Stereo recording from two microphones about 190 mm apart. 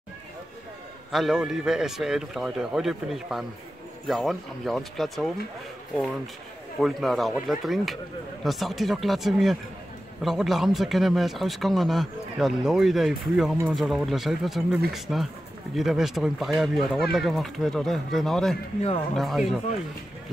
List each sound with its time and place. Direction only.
1.1 s speech: centre (ahead or behind)
6.8 s speech: centre (ahead or behind)
18.8 s speech: 30° left (ahead or behind)
19.1 s speech: centre (ahead or behind)